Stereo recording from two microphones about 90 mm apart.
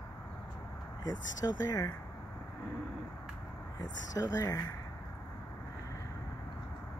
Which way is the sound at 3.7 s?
45° left (ahead or behind).